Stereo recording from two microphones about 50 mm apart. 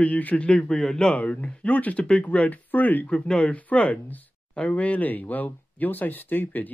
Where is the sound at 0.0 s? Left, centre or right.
Left; by 1.1 s centre.